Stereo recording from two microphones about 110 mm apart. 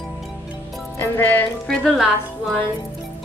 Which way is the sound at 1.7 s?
5° left (ahead or behind).